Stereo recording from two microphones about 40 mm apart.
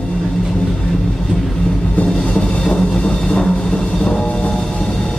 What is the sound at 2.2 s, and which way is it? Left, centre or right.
Music, left.